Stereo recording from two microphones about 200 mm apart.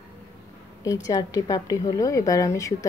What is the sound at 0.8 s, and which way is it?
A woman's voice, 15° left (ahead or behind).